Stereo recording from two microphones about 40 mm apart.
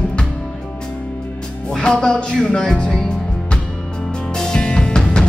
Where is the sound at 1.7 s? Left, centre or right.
Centre.